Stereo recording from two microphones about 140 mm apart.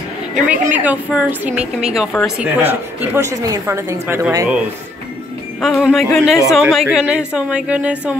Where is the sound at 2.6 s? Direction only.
15° right (ahead or behind).